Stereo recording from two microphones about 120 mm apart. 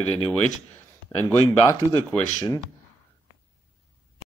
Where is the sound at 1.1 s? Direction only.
20° left (ahead or behind).